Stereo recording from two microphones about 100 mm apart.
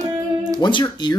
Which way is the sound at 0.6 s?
50° left (ahead or behind).